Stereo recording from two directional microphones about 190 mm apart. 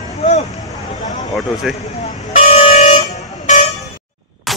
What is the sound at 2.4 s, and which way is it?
Vehicle, 30° left (ahead or behind).